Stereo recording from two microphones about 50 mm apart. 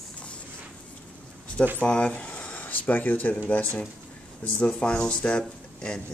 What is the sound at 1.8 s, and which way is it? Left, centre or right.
Speech, left.